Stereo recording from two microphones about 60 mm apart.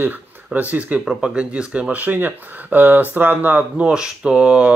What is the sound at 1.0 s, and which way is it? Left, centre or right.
Speech, centre.